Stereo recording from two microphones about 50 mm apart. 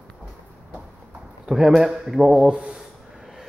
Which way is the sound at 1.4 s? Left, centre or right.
Centre.